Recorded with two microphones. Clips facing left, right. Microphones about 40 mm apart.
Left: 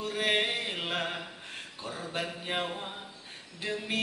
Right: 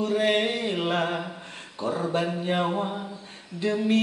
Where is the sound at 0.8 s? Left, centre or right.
Centre.